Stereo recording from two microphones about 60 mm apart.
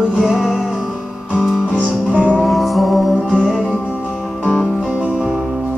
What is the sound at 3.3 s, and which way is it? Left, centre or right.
Music, centre.